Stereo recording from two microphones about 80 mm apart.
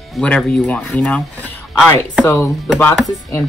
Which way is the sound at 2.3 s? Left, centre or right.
Left.